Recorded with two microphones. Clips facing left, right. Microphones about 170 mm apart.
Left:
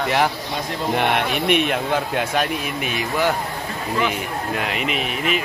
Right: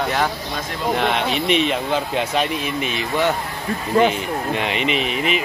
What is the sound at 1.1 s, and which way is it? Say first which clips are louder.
Speech: even; 55° left (ahead or behind).